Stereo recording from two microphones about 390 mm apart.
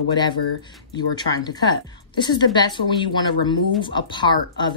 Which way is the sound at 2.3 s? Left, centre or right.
Centre.